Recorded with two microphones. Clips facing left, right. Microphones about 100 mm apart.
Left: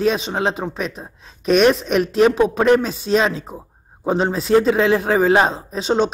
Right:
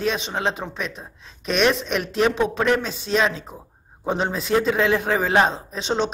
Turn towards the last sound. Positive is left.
turn(degrees=5)  # may be behind; listen again after turning